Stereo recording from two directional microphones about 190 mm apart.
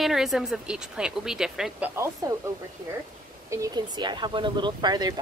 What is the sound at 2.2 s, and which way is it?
Speech, 20° right (ahead or behind).